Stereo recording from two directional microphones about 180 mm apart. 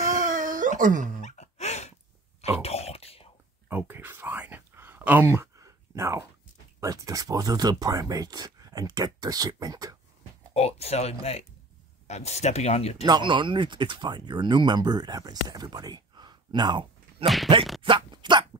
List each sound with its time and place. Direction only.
0.1 s wail: 45° right (ahead or behind)
1.2 s a sound: 40° left (ahead or behind)
3.6 s whispering: 10° right (ahead or behind)
6.8 s speech: 20° right (ahead or behind)
10.5 s speech: 35° left (ahead or behind)
13.0 s speech: 25° right (ahead or behind)